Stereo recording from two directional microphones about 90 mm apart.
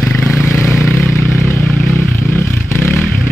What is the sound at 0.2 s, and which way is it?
Vehicle, 25° left (ahead or behind).